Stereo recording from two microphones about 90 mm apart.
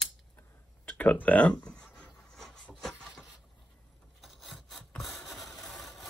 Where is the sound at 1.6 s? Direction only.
10° left (ahead or behind).